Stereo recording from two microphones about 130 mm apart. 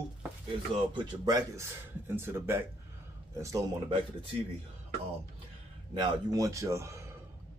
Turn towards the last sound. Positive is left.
turn(degrees=-20)  # may be behind; listen again after turning